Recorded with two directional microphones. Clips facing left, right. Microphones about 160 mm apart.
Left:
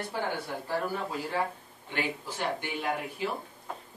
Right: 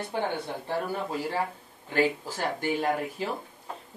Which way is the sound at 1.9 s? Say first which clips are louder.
Right 7 dB; 40° right (ahead or behind).